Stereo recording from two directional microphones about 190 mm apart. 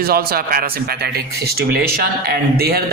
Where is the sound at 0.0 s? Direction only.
55° right (ahead or behind).